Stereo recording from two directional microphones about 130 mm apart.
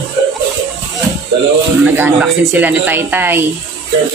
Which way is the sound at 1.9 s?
15° right (ahead or behind).